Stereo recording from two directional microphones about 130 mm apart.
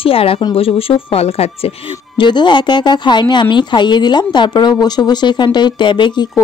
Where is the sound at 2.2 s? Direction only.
35° left (ahead or behind).